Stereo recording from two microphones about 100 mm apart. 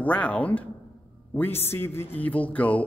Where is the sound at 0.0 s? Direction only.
15° left (ahead or behind).